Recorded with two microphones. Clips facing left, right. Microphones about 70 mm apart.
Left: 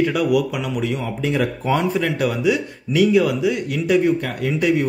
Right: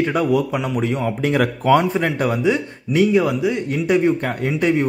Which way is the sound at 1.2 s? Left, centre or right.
Right.